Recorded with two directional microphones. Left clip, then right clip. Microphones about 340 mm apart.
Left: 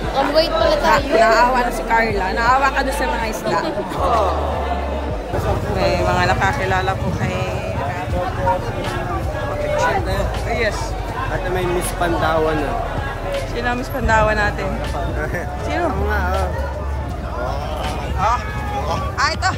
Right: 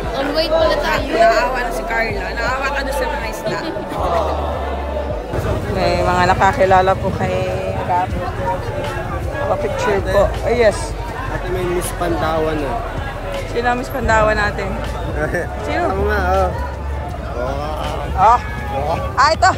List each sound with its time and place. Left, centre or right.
0.3 s speech: centre
0.8 s speech: centre
3.6 s speech: centre
5.8 s speech: centre
10.5 s speech: centre
12.0 s speech: centre
13.6 s speech: centre
16.1 s speech: right
18.2 s speech: centre